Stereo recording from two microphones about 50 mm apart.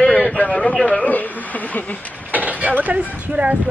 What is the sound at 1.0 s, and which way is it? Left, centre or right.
Speech, left.